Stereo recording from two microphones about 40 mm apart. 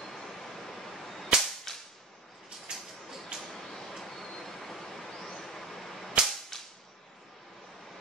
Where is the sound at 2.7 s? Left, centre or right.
Centre.